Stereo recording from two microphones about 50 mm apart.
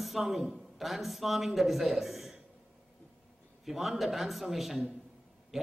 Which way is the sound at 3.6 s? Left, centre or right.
Centre.